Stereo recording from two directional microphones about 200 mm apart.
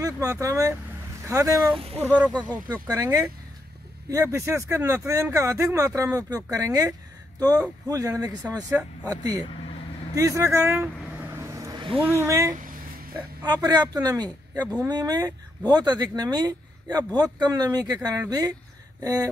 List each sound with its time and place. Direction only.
0.0 s speech: 15° right (ahead or behind)
11.3 s vehicle: 15° right (ahead or behind)
12.2 s speech: 15° right (ahead or behind)